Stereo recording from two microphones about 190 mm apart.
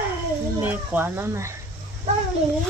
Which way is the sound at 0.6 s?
10° right (ahead or behind).